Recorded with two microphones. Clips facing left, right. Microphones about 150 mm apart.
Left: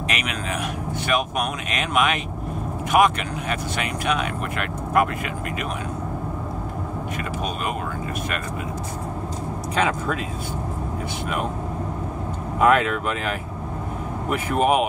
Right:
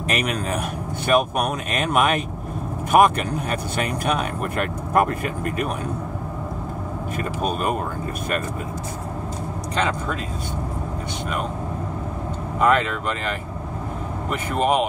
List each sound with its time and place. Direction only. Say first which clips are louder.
0.1 s speech: right 6 dB; 40° right (ahead or behind)
1.8 s speech: right 2 dB; 40° right (ahead or behind)
9.8 s speech: left 1 dB; 5° left (ahead or behind)
12.5 s speech: left 1 dB; 5° left (ahead or behind)
14.3 s speech: left 1 dB; 5° left (ahead or behind)